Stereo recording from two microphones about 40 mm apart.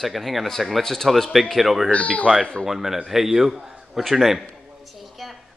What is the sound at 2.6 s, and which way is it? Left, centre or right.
A man's voice, centre.